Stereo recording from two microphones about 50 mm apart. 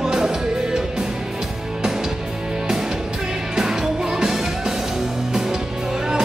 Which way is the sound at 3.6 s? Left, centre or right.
Centre.